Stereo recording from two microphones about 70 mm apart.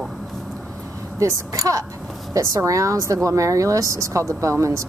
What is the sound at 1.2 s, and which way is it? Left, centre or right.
A woman's voice, right.